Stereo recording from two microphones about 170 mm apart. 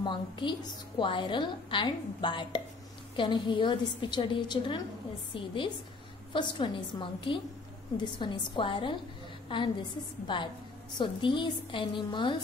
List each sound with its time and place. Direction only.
0.0 s a woman's voice: 30° left (ahead or behind)